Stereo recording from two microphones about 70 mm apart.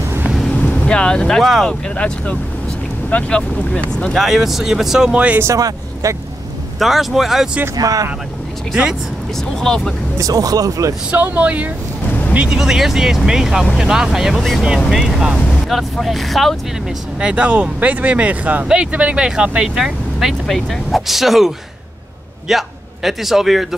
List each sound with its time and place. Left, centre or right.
0.5 s boat: centre
1.7 s speech: centre
4.1 s speech: centre
5.4 s speech: right
6.8 s speech: centre
7.7 s speech: right
9.6 s speech: centre
10.1 s speech: right
11.1 s speech: right
12.4 s speech: centre
17.2 s a man's voice: centre